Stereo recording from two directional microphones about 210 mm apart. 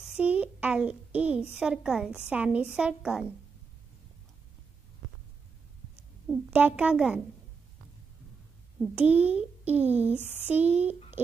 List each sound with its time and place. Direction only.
0.0 s a sound: 5° right (ahead or behind)
1.6 s a woman's voice: 5° right (ahead or behind)
6.2 s a woman's voice: 5° right (ahead or behind)
8.8 s a child's voice: 5° right (ahead or behind)